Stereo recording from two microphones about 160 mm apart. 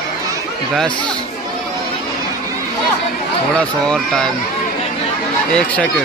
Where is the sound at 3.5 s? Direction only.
5° left (ahead or behind).